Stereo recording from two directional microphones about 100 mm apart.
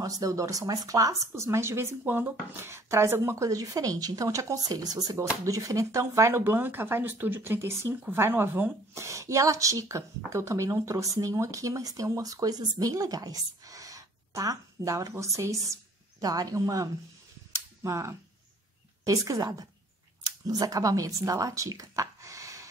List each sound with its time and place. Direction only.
0.0 s a woman's voice: 35° right (ahead or behind)